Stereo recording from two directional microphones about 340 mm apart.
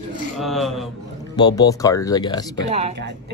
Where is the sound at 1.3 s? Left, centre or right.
Centre.